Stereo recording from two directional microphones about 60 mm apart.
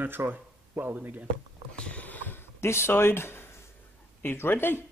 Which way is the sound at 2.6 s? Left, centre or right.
Left.